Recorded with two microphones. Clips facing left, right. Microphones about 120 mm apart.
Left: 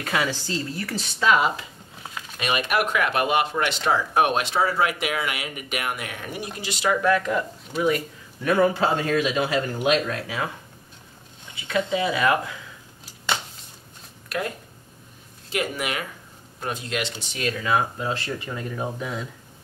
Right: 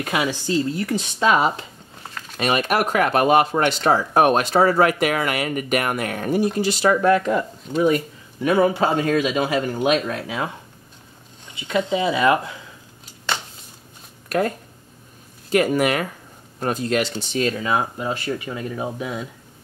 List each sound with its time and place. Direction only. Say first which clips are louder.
0.0 s speech: right 3 dB; 20° right (ahead or behind)
1.3 s speech: left 1 dB; 30° right (ahead or behind)
8.4 s speech: right 2 dB; 15° right (ahead or behind)
11.5 s speech: right 3 dB; 25° right (ahead or behind)
15.5 s speech: right 9 dB; 45° right (ahead or behind); by 19.2 s 10° right (ahead or behind)